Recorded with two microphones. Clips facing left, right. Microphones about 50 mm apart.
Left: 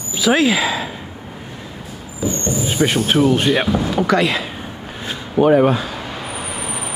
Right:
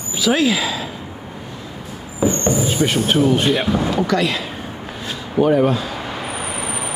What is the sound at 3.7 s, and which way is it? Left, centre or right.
Speech, centre.